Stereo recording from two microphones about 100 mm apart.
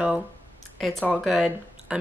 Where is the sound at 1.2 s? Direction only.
5° right (ahead or behind).